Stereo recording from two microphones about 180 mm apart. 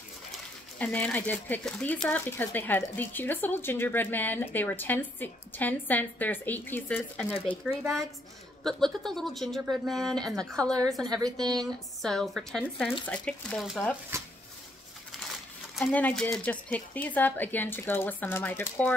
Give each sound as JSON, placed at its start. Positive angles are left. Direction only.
{"t": 0.7, "sound": "speech", "side_deg": 5}
{"t": 7.7, "sound": "speech", "side_deg": -5}
{"t": 11.1, "sound": "a woman's voice", "side_deg": -20}
{"t": 11.3, "sound": "speech", "side_deg": 0}
{"t": 14.1, "sound": "a sound", "side_deg": -15}
{"t": 15.1, "sound": "a sound", "side_deg": 0}
{"t": 15.9, "sound": "speech", "side_deg": 5}